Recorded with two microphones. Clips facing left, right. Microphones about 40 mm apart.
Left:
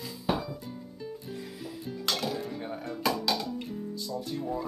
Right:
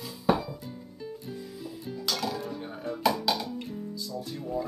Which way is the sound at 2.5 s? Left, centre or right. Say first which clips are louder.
Left 1 dB; centre.